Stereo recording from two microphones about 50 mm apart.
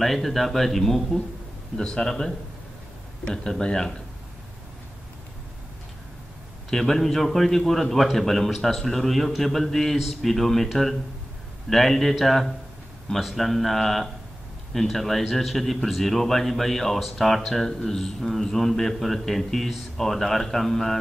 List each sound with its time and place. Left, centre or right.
0.0 s a man's voice: centre
1.8 s speech: centre
6.7 s a man's voice: centre